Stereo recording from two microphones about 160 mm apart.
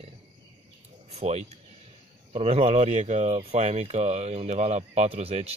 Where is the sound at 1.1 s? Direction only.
40° right (ahead or behind).